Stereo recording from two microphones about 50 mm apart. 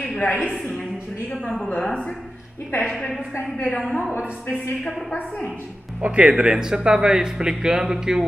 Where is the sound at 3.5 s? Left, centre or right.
Left.